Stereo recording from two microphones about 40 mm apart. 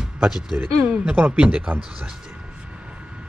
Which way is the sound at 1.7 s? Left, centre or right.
Centre.